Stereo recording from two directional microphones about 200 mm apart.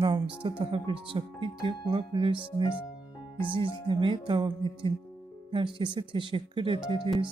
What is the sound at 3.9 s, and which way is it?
Speech, 25° right (ahead or behind).